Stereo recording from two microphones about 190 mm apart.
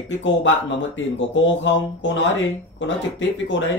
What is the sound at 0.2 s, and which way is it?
Speech, 80° left.